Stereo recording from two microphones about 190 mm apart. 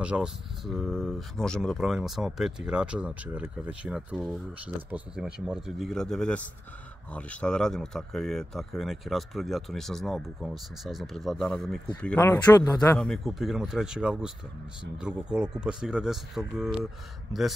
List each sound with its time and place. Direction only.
0.0 s speech: 5° right (ahead or behind)
12.2 s speech: 15° left (ahead or behind)
12.9 s speech: 5° left (ahead or behind)